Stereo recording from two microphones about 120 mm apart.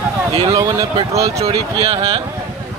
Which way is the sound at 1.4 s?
55° right (ahead or behind).